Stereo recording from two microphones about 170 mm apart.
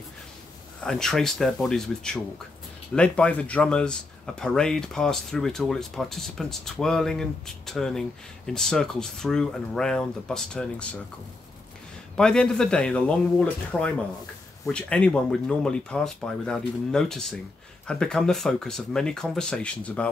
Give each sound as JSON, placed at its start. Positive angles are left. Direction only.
{"t": 0.8, "sound": "speech", "side_deg": 5}
{"t": 12.2, "sound": "speech", "side_deg": 5}